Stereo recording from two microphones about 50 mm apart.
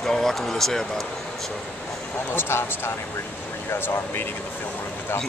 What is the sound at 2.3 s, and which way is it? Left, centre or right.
Speech, left.